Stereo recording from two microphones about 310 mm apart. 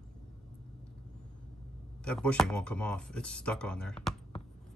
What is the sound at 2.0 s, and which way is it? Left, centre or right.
Speech, centre.